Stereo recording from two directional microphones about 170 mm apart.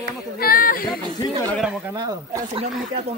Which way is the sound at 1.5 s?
5° right (ahead or behind).